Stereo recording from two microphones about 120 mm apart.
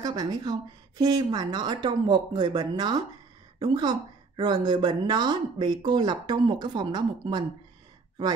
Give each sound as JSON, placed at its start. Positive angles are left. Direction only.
{"t": 0.0, "sound": "speech", "side_deg": -35}